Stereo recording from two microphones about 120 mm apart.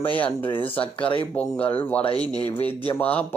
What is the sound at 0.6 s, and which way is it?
Speech, 50° left (ahead or behind).